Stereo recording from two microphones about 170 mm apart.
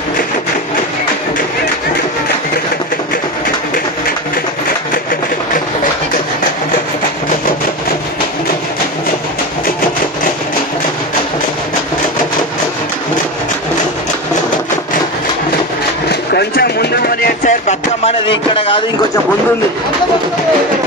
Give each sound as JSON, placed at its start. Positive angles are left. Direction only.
{"t": 16.1, "sound": "vehicle", "side_deg": 75}
{"t": 18.5, "sound": "speech", "side_deg": 35}